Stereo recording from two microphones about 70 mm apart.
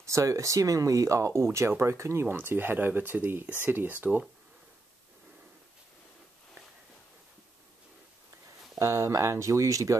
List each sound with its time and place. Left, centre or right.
0.0 s speech: right
8.7 s speech: right